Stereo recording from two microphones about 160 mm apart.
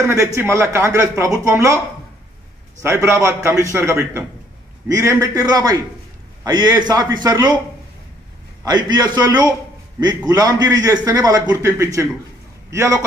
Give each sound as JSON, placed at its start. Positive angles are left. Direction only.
{"t": 0.0, "sound": "speech", "side_deg": -20}
{"t": 2.8, "sound": "a man's voice", "side_deg": -15}
{"t": 8.6, "sound": "speech", "side_deg": -25}